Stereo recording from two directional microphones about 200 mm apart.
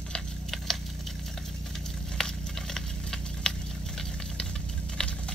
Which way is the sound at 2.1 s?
5° left (ahead or behind).